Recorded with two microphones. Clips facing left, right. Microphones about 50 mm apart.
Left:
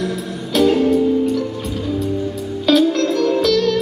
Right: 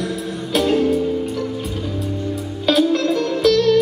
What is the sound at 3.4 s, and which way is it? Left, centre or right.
Music, centre.